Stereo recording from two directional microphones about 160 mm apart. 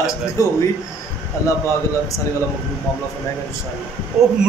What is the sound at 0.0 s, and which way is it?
Speech, 20° left (ahead or behind).